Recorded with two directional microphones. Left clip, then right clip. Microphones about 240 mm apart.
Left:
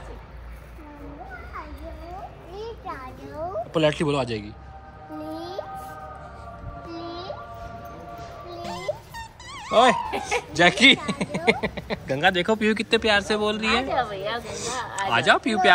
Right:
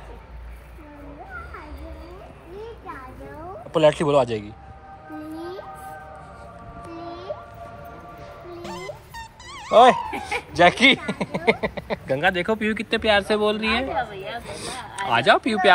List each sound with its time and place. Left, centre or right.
3.7 s speech: centre
8.6 s music: centre
10.2 s speech: centre